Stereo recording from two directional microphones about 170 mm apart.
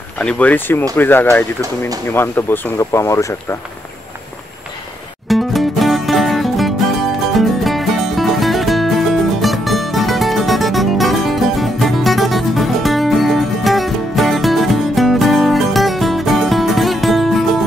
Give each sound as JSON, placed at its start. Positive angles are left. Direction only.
{"t": 0.2, "sound": "speech", "side_deg": 5}
{"t": 5.3, "sound": "music", "side_deg": 0}